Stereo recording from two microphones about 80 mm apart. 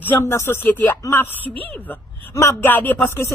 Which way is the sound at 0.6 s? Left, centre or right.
Left.